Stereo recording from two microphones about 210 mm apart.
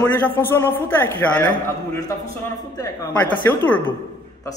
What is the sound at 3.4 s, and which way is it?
Speech, 10° left (ahead or behind).